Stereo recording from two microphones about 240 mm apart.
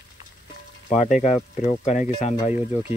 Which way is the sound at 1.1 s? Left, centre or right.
Left.